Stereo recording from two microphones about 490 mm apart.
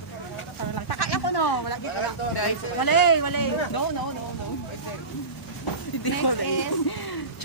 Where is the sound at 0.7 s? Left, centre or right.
Left.